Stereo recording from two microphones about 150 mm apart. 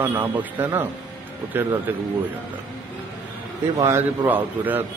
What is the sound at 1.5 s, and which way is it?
Speech, 15° right (ahead or behind).